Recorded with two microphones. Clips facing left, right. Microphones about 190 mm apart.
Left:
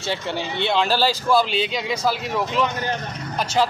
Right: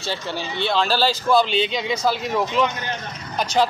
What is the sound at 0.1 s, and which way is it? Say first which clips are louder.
Speech: left 2 dB; 20° left (ahead or behind).